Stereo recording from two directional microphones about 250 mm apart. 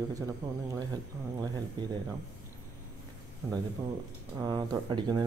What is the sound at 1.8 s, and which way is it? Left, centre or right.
Speech, centre.